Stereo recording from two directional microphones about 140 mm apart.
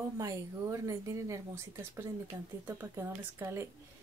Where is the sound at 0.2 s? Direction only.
25° right (ahead or behind).